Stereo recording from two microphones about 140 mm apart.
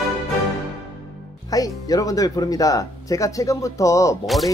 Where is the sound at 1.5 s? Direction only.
25° left (ahead or behind).